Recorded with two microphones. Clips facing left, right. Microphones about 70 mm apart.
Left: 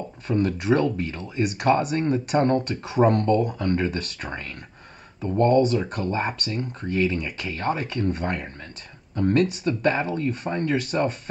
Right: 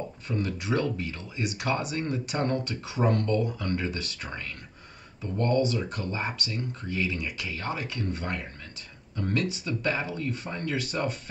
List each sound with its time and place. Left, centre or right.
0.3 s speech: left